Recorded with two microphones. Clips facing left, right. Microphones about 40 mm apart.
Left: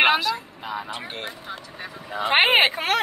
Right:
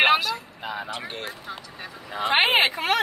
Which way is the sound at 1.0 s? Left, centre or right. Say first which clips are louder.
Even; centre.